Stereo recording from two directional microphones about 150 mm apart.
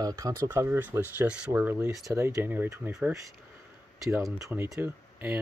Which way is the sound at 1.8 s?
20° right (ahead or behind).